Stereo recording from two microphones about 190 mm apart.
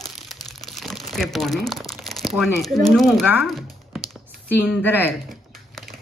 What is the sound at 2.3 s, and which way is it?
Speech, centre (ahead or behind).